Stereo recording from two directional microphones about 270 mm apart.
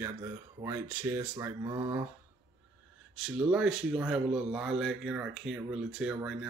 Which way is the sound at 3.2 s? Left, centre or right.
Centre.